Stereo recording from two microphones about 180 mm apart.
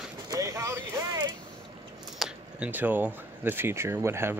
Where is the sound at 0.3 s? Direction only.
15° right (ahead or behind).